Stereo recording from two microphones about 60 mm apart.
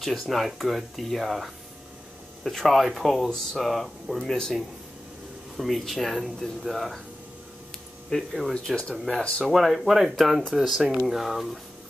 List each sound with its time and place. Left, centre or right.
0.0 s speech: centre
5.6 s speech: centre
8.1 s speech: centre
9.2 s speech: centre
9.5 s speech: centre